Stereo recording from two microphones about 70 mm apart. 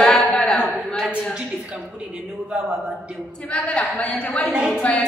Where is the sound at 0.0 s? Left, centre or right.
Centre.